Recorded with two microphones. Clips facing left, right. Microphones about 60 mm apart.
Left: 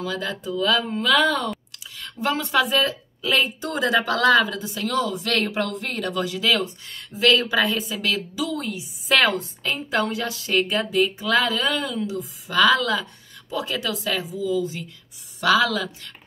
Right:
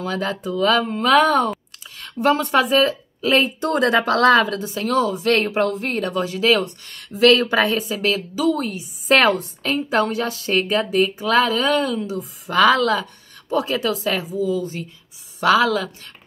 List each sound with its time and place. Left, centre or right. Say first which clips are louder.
0.0 s a woman's voice: right 4 dB; right
2.0 s a sound: right 7 dB; right
2.5 s a woman's voice: right 4 dB; right
4.7 s speech: right 4 dB; right
6.6 s speech: right 1 dB; right
8.0 s speech: right 5 dB; right
8.5 s a woman's voice: right 4 dB; right
10.8 s speech: right 3 dB; right
13.7 s a woman's voice: right 5 dB; right